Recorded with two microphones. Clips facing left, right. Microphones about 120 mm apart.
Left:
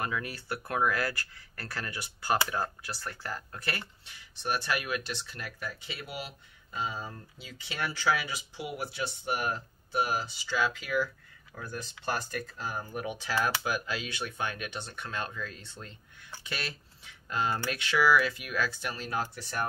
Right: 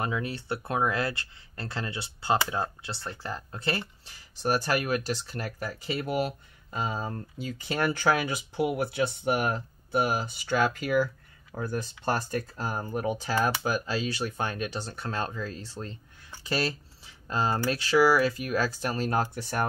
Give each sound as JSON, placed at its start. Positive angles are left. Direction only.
{"t": 0.0, "sound": "speech", "side_deg": -25}
{"t": 13.3, "sound": "speech", "side_deg": -25}